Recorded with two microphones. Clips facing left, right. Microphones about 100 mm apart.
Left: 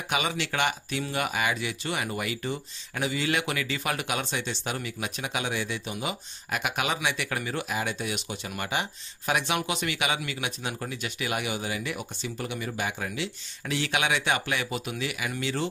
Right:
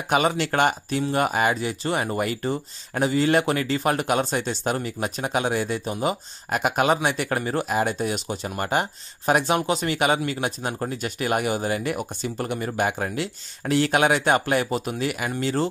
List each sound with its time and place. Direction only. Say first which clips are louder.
0.1 s speech: right 8 dB; 40° right (ahead or behind)